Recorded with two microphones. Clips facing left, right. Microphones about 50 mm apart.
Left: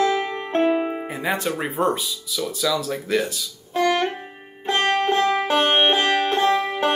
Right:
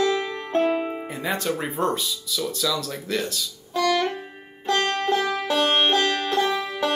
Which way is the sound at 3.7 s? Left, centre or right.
Left.